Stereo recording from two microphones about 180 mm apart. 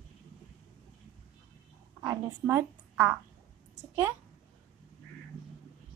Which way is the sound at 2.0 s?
15° right (ahead or behind).